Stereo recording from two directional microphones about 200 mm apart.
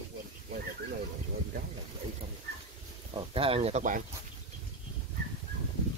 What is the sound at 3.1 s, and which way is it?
Speech, 25° right (ahead or behind).